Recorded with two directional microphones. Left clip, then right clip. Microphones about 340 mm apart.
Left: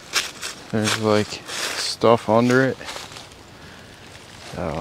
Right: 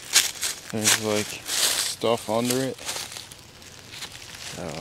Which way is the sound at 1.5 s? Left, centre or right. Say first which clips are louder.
Right 2 dB; centre.